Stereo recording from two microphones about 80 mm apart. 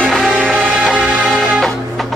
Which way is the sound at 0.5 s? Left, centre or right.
Centre.